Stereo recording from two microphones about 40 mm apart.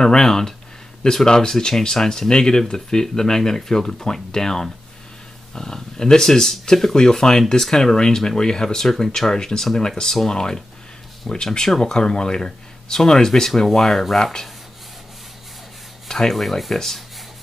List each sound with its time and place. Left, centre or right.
0.0 s speech: centre
16.1 s speech: centre